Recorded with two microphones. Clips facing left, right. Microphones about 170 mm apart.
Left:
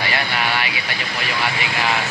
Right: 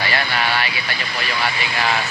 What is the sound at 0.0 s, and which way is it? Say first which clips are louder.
Speech: right 1 dB; 20° left (ahead or behind).